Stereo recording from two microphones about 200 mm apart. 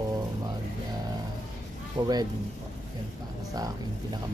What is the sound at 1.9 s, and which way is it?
Speech, 20° right (ahead or behind).